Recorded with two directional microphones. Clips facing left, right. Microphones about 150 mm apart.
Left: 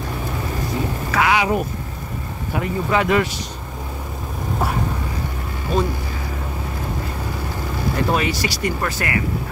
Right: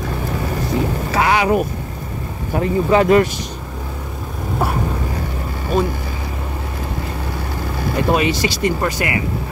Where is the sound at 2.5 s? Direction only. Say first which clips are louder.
Right 6 dB; 35° right (ahead or behind).